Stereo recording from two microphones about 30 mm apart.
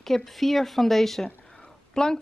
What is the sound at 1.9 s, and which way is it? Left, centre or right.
Speech, left.